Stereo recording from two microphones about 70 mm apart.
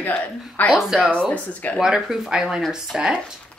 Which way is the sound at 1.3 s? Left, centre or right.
Left.